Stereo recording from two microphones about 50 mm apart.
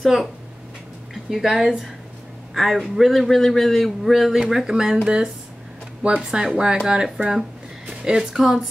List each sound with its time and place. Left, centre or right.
0.0 s a man's voice: centre
1.3 s speech: centre
2.5 s a man's voice: centre
7.2 s speech: right
7.8 s a woman's voice: centre